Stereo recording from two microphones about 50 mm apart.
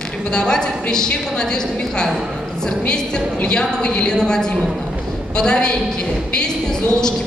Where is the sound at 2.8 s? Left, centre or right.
Centre.